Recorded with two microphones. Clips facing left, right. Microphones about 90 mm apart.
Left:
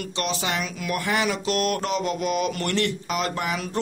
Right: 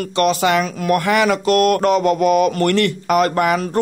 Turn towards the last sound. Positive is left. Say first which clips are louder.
# right 10 dB
turn(degrees=-55)  # may be behind; listen again after turning